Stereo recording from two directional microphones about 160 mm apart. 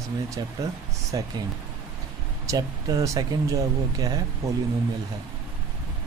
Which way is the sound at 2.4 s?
20° right (ahead or behind).